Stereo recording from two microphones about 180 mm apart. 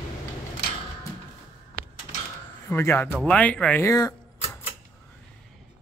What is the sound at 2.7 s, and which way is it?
Speech, 15° left (ahead or behind).